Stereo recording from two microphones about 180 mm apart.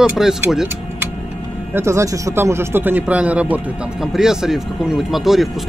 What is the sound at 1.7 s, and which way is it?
A man's voice, 15° right (ahead or behind).